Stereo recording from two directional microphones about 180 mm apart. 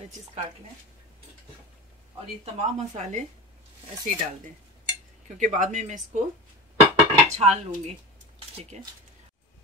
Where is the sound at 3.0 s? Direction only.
40° right (ahead or behind).